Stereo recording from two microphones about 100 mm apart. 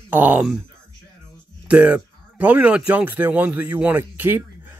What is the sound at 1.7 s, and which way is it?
Speech, 15° right (ahead or behind).